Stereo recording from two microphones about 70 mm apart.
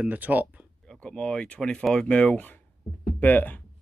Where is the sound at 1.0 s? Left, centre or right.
Centre.